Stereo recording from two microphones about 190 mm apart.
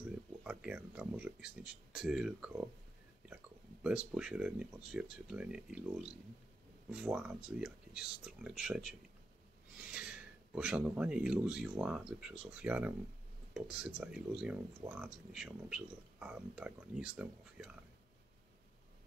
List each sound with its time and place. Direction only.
0.4 s speech: 5° right (ahead or behind)
3.8 s speech: 5° right (ahead or behind)
9.9 s speech: 5° right (ahead or behind)